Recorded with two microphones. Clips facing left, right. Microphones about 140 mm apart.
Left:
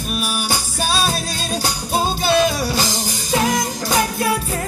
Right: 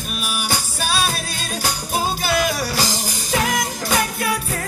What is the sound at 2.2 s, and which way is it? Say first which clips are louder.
Music: left 4 dB; 25° left (ahead or behind).